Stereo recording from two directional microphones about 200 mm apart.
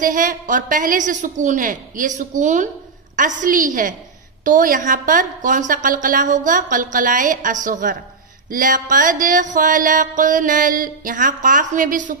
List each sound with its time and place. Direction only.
0.0 s mantra: 40° right (ahead or behind)